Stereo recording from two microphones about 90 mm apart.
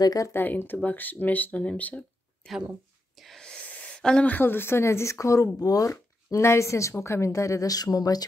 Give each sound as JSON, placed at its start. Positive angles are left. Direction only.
{"t": 0.0, "sound": "speech", "side_deg": 40}
{"t": 0.3, "sound": "speech", "side_deg": 20}
{"t": 3.2, "sound": "a sound", "side_deg": 5}
{"t": 3.6, "sound": "speech", "side_deg": 10}